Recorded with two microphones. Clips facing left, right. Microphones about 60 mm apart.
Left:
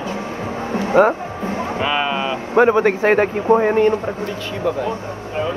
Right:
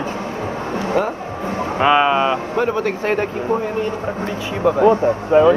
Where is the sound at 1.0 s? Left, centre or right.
Left.